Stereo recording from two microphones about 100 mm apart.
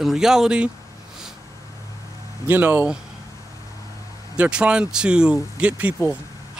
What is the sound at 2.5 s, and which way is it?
Speech, 20° right (ahead or behind).